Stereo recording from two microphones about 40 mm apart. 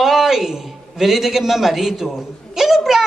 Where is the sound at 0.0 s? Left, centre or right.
Centre.